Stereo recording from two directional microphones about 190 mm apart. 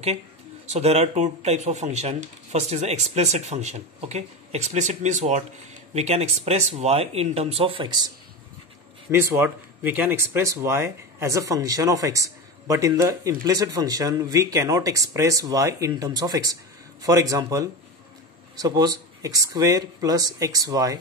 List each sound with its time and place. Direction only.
0.7 s speech: 35° right (ahead or behind)
9.1 s speech: 10° right (ahead or behind)